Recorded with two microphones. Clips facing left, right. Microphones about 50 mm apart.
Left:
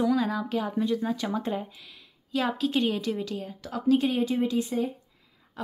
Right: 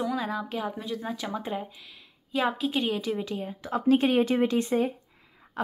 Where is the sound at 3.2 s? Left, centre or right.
Right.